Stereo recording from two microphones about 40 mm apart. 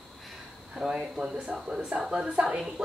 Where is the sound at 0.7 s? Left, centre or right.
Centre.